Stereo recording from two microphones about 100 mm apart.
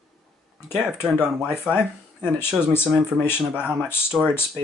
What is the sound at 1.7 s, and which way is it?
Speech, 20° left (ahead or behind).